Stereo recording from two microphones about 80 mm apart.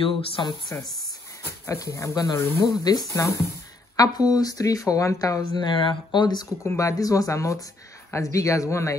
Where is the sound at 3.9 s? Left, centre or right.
Left.